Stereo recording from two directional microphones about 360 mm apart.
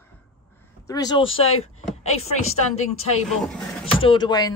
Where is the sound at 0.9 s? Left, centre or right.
Centre.